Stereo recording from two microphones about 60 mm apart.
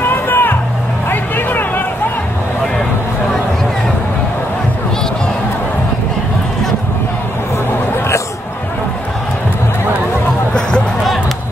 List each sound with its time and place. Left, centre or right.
0.0 s music: left